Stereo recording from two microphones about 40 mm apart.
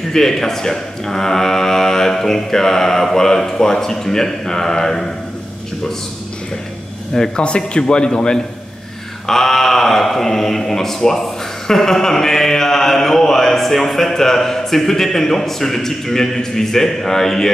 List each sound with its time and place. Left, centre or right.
0.1 s speech: centre
7.3 s a man's voice: left